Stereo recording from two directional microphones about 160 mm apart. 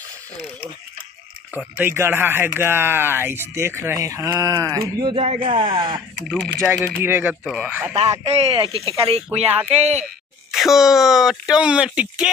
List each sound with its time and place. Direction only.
1.5 s speech: 10° right (ahead or behind)
5.0 s speech: 40° right (ahead or behind)
6.6 s speech: 15° right (ahead or behind)
7.9 s speech: 40° right (ahead or behind)
10.5 s speech: centre (ahead or behind)